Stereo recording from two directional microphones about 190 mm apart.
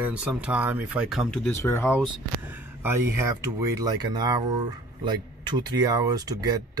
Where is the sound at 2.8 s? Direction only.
10° right (ahead or behind).